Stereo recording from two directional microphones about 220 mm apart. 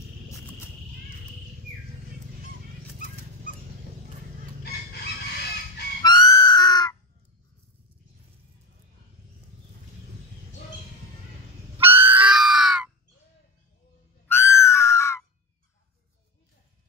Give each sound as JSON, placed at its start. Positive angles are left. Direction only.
{"t": 6.0, "sound": "music", "side_deg": 15}
{"t": 11.8, "sound": "screaming", "side_deg": -10}
{"t": 14.2, "sound": "screaming", "side_deg": 10}